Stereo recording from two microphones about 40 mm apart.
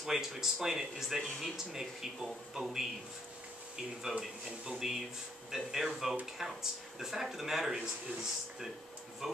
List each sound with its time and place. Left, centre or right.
0.0 s speech: centre
4.6 s speech: centre